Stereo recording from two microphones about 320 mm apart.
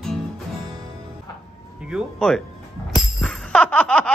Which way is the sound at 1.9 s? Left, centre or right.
Centre.